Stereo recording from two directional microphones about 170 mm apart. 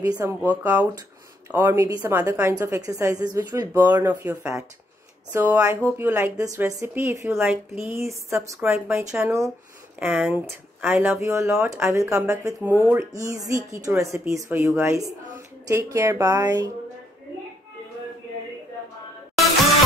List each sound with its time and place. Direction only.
0.0 s a woman's voice: 20° right (ahead or behind)